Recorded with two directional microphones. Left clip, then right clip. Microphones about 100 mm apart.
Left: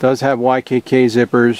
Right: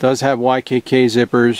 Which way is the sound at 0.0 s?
25° right (ahead or behind).